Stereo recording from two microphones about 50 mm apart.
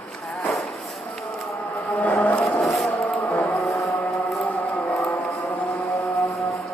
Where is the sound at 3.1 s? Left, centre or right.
Left.